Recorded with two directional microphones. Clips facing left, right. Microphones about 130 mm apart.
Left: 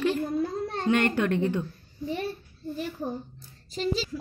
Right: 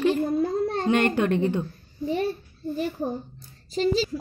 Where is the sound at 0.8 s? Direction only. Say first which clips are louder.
Right 1 dB; 25° right (ahead or behind).